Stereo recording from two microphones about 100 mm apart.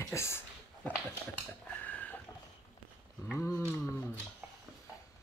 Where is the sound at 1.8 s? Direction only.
15° left (ahead or behind).